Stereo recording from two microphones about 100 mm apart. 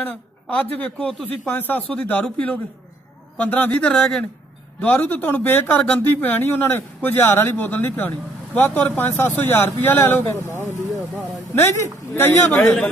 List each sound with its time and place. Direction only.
0.0 s speech: 15° left (ahead or behind)
4.7 s speech: 15° left (ahead or behind)
11.5 s speech: 25° left (ahead or behind)